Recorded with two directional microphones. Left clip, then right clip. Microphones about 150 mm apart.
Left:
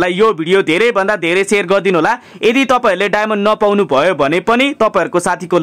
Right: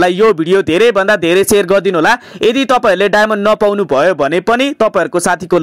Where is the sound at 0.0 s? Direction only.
35° right (ahead or behind).